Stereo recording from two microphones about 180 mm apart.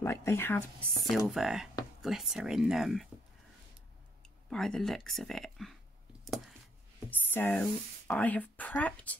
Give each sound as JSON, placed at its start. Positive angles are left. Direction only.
{"t": 0.0, "sound": "speech", "side_deg": 15}
{"t": 1.0, "sound": "speech", "side_deg": 0}
{"t": 4.5, "sound": "speech", "side_deg": 5}
{"t": 6.2, "sound": "a sound", "side_deg": 0}
{"t": 7.1, "sound": "speech", "side_deg": 10}